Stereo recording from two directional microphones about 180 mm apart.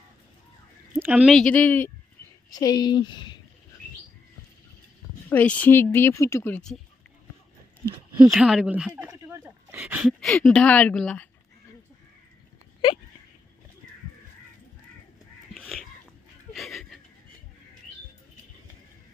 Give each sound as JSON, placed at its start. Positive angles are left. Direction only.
{"t": 0.9, "sound": "a woman's voice", "side_deg": -10}
{"t": 2.5, "sound": "a woman's voice", "side_deg": 20}
{"t": 5.3, "sound": "a woman's voice", "side_deg": 10}
{"t": 8.3, "sound": "speech", "side_deg": -5}
{"t": 15.5, "sound": "crow", "side_deg": 0}
{"t": 16.5, "sound": "a sound", "side_deg": 0}